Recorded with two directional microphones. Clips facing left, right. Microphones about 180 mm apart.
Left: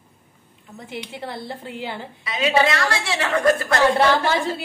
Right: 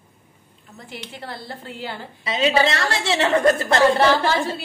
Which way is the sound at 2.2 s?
25° right (ahead or behind).